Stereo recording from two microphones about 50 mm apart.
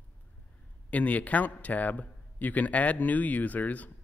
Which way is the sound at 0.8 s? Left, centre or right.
Left.